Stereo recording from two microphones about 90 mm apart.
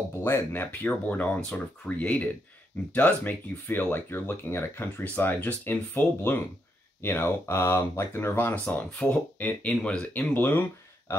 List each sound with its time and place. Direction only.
0.2 s speech: 25° left (ahead or behind)
9.7 s speech: 10° left (ahead or behind)
10.1 s speech: 20° left (ahead or behind)